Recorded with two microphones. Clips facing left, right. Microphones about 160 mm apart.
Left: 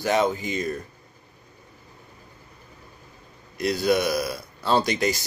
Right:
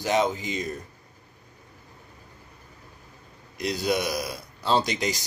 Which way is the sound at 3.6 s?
20° right (ahead or behind).